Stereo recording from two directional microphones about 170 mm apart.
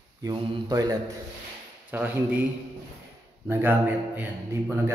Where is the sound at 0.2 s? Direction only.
20° right (ahead or behind).